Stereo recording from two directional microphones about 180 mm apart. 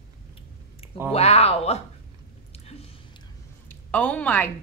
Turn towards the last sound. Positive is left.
turn(degrees=10)  # may be behind; listen again after turning